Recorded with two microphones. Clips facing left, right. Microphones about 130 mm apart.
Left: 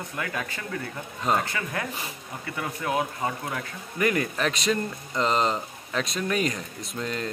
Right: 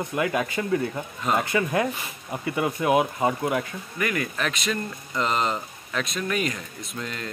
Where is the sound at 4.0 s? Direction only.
30° left (ahead or behind).